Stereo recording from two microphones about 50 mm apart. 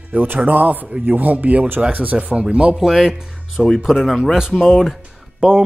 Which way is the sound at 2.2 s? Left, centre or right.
Right.